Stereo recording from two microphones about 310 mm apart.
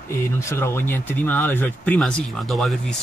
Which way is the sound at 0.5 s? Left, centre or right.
Centre.